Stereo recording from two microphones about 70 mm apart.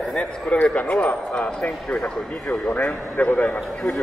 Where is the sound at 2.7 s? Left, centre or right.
Left.